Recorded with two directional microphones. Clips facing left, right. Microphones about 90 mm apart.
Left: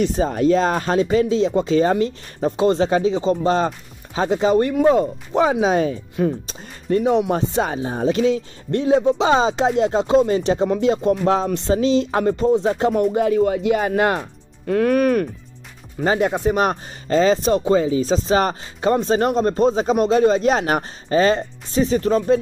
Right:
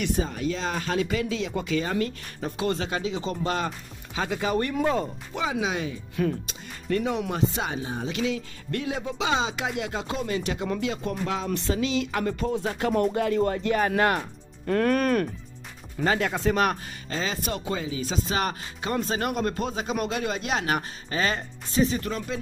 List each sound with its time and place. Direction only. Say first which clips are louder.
0.0 s speech: left 9 dB; 35° left (ahead or behind); by 5.1 s 20° left (ahead or behind)
5.3 s speech: left 11 dB; 40° left (ahead or behind)
6.2 s speech: left 5 dB; 25° left (ahead or behind)
14.7 s speech: left 6 dB; 10° left (ahead or behind)
16.0 s speech: left 6 dB; 25° left (ahead or behind)
17.1 s speech: left 14 dB; 40° left (ahead or behind)